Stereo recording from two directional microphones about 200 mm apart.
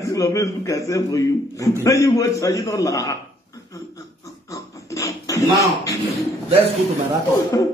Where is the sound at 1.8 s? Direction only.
15° left (ahead or behind).